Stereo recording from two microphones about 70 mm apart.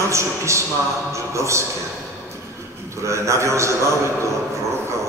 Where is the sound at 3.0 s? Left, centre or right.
Right.